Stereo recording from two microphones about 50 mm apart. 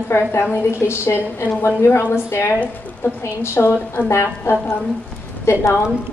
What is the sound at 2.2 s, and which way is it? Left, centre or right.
A woman's voice, left.